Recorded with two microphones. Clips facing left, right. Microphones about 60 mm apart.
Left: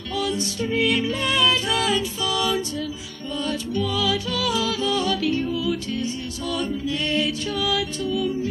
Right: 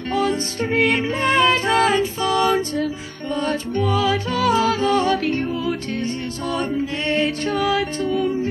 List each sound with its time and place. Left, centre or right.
0.1 s music: right